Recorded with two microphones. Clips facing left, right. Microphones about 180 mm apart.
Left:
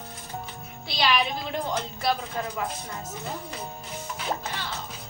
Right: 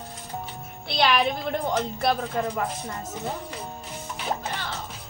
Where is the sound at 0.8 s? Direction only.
60° right (ahead or behind).